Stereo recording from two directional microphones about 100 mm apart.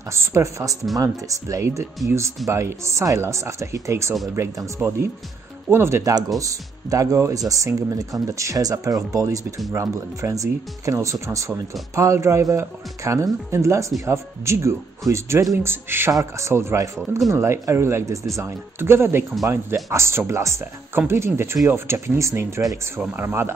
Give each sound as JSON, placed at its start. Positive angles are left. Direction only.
{"t": 0.1, "sound": "speech", "side_deg": -30}
{"t": 5.7, "sound": "speech", "side_deg": -25}